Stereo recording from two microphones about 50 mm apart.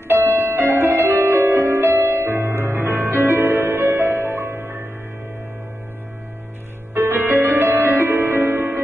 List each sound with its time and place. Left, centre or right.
0.1 s music: right
0.7 s music: right
6.9 s music: right